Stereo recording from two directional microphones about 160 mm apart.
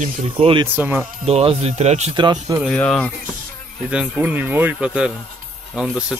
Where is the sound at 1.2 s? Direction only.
40° right (ahead or behind).